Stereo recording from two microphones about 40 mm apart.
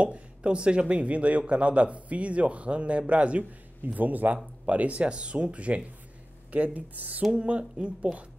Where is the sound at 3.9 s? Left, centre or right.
Right.